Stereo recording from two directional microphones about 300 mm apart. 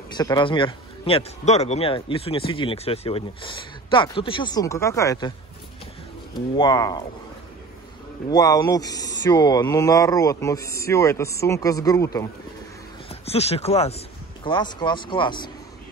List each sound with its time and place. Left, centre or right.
0.1 s a man's voice: centre
6.3 s a man's voice: centre
8.3 s a man's voice: centre